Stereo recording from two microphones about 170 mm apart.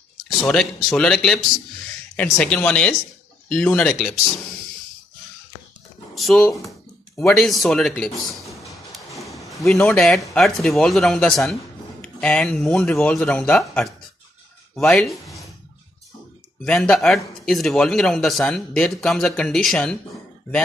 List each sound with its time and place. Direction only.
0.5 s speech: 5° left (ahead or behind)
6.1 s speech: centre (ahead or behind)
9.3 s a sound: 20° left (ahead or behind)
9.6 s speech: centre (ahead or behind)
16.6 s speech: 5° left (ahead or behind)